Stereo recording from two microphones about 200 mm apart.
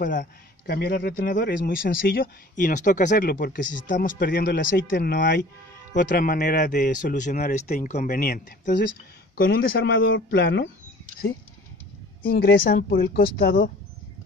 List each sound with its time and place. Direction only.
0.0 s a man's voice: 45° left (ahead or behind)
10.1 s speech: 60° left (ahead or behind)
12.2 s a man's voice: 50° left (ahead or behind)